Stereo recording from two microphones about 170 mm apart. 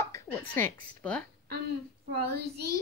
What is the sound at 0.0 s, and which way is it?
A woman's voice, 15° left (ahead or behind).